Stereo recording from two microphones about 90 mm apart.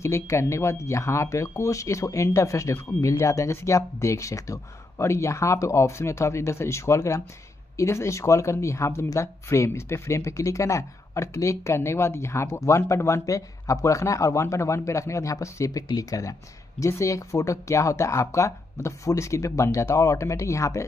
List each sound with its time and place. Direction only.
0.0 s speech: 30° left (ahead or behind)